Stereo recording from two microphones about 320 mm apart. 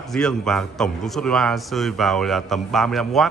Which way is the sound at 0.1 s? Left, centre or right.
Centre.